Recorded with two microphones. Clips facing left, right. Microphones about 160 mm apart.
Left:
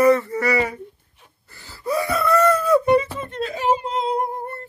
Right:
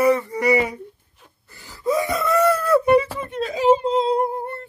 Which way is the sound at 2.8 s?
10° right (ahead or behind).